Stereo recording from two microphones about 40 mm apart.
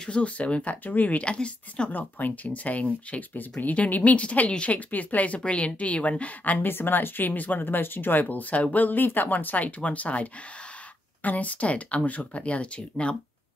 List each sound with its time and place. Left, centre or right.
0.0 s speech: left
1.2 s speech: left
1.9 s speech: left
3.7 s speech: left
6.6 s speech: left